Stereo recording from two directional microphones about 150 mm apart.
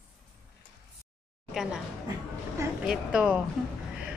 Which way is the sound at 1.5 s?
5° right (ahead or behind).